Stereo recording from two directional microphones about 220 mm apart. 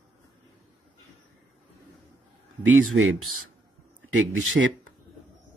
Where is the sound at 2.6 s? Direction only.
65° right (ahead or behind).